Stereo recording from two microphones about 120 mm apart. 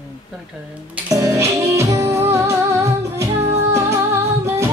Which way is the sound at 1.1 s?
25° right (ahead or behind).